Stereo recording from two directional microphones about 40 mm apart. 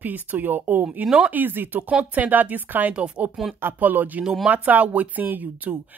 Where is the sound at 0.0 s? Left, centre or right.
Right.